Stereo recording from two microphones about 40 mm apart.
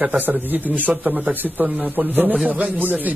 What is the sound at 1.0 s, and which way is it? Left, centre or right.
Speech, right.